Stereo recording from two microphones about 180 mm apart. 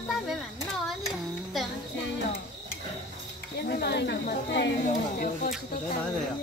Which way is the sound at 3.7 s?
60° left (ahead or behind).